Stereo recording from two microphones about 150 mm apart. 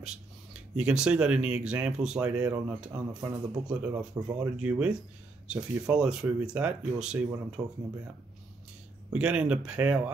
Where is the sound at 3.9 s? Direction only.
25° right (ahead or behind).